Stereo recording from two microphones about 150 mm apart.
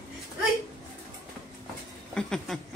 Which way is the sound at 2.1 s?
5° left (ahead or behind).